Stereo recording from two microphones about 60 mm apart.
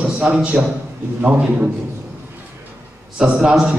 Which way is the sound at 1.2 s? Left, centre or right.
Right.